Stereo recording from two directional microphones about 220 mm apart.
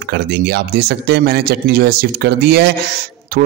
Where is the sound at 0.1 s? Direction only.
50° right (ahead or behind).